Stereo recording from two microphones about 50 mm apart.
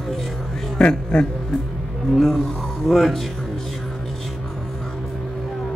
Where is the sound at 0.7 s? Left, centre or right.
Centre.